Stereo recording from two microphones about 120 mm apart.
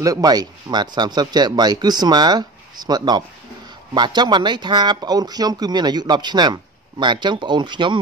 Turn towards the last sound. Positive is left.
turn(degrees=-40)  # may be behind; listen again after turning